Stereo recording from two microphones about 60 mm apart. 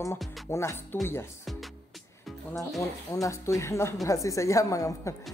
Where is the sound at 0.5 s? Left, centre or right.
Left.